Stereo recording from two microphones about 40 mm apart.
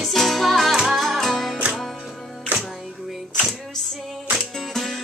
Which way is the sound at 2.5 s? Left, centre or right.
Right.